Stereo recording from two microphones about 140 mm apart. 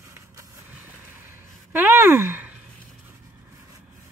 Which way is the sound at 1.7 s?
15° right (ahead or behind).